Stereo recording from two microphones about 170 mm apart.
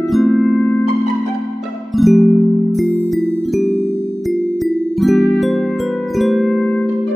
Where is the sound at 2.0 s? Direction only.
Centre (ahead or behind).